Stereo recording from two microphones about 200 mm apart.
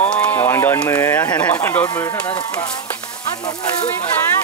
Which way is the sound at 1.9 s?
20° left (ahead or behind).